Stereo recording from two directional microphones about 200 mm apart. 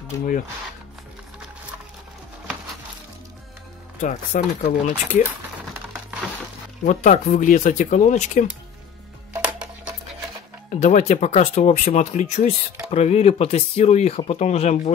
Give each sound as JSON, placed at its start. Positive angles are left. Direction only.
{"t": 4.0, "sound": "speech", "side_deg": 35}
{"t": 6.9, "sound": "speech", "side_deg": 40}
{"t": 9.3, "sound": "music", "side_deg": -5}
{"t": 10.8, "sound": "speech", "side_deg": 35}